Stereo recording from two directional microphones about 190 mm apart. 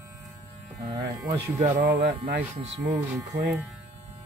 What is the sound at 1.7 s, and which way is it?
Speech, 65° right (ahead or behind).